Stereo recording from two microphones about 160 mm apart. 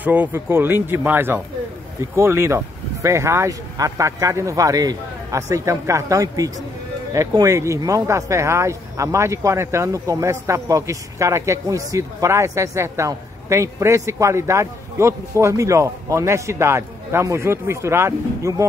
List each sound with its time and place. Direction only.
0.0 s a man's voice: 10° right (ahead or behind)